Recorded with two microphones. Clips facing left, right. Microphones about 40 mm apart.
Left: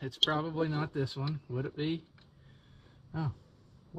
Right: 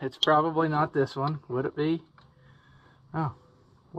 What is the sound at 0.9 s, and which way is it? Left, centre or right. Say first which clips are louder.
Speech: right 9 dB; right.